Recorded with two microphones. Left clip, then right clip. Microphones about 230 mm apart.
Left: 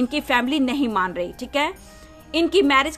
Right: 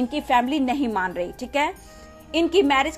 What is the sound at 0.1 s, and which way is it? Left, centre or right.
A woman's voice, left.